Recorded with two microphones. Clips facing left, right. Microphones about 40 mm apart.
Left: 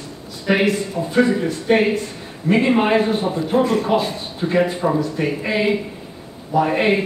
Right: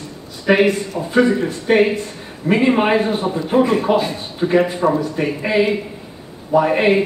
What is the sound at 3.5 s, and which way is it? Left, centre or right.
Speech, right.